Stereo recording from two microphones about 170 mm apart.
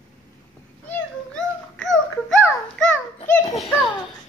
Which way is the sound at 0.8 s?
5° left (ahead or behind).